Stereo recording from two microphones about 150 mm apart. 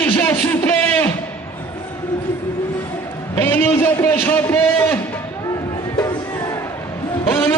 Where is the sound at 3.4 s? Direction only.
15° left (ahead or behind).